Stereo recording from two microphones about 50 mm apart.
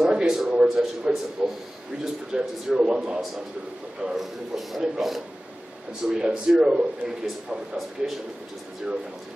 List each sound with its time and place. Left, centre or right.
0.0 s a man's voice: centre